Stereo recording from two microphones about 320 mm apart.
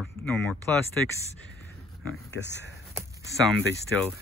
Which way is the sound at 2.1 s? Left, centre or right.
Left.